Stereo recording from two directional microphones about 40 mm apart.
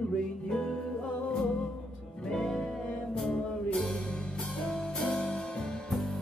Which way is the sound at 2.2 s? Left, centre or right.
Centre.